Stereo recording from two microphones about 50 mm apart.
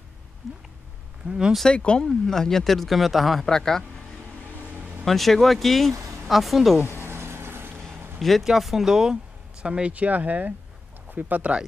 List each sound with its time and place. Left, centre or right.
0.4 s speech: centre
1.2 s speech: right
1.7 s speech: centre
3.4 s a man's voice: centre
5.0 s speech: centre
7.0 s vehicle: right
8.2 s speech: centre; by 11.5 s right